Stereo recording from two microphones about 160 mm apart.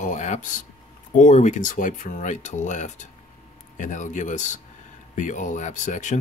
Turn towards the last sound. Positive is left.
turn(degrees=50)  # may be behind; listen again after turning